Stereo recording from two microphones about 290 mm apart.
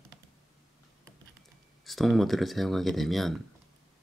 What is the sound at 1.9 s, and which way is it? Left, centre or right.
Speech, centre.